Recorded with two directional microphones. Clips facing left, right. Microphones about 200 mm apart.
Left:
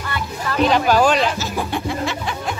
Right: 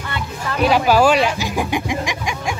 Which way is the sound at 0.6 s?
5° right (ahead or behind).